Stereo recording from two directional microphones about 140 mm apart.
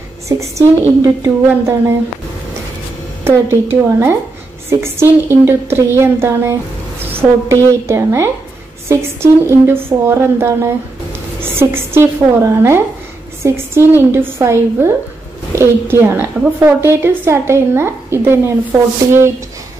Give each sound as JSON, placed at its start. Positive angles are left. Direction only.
{"t": 0.3, "sound": "a woman's voice", "side_deg": -20}
{"t": 3.3, "sound": "a woman's voice", "side_deg": -15}